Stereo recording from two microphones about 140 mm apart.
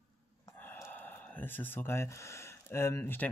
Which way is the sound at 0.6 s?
15° left (ahead or behind).